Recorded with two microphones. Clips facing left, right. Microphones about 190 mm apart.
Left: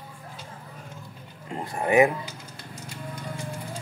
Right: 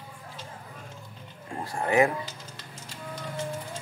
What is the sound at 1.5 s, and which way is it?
Speech, 20° left (ahead or behind).